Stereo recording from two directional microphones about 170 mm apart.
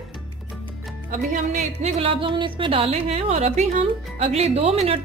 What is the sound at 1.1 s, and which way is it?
A woman's voice, 45° right (ahead or behind).